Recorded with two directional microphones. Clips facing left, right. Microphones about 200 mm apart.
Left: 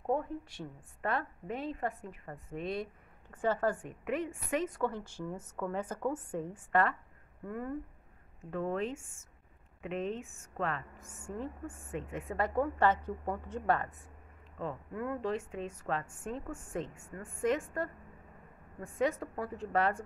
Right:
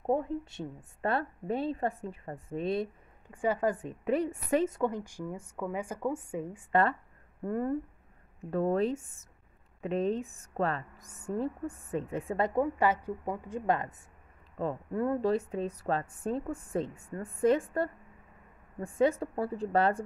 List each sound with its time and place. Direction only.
0.0 s a woman's voice: 25° right (ahead or behind)
3.3 s a woman's voice: 15° right (ahead or behind)
4.0 s a woman's voice: 35° right (ahead or behind)
4.6 s a woman's voice: 20° right (ahead or behind)
6.7 s a woman's voice: 25° right (ahead or behind)
7.4 s a woman's voice: 40° right (ahead or behind); by 13.8 s 15° right (ahead or behind)
14.6 s a woman's voice: 35° right (ahead or behind)